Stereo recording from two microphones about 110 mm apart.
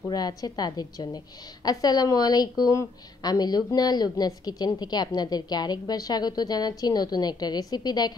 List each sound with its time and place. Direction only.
0.1 s a woman's voice: 35° left (ahead or behind)